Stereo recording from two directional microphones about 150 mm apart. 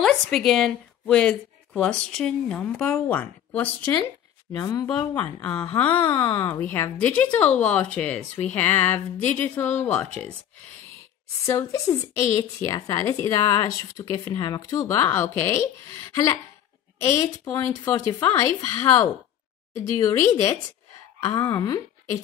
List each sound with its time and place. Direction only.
0.0 s a woman's voice: centre (ahead or behind)
4.6 s a woman's voice: 25° left (ahead or behind)
6.0 s speech: 30° left (ahead or behind)
6.6 s a woman's voice: 10° left (ahead or behind)
11.4 s a woman's voice: 20° left (ahead or behind)